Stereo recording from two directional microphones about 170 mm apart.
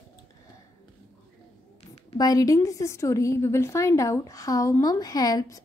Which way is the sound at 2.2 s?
20° left (ahead or behind).